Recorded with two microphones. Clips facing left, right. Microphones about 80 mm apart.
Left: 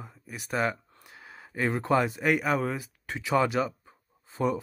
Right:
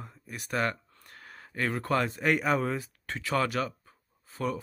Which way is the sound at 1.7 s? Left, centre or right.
Centre.